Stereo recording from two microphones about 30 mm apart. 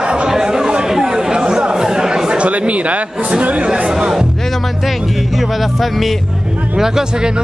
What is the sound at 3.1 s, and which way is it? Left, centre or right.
Speech, right.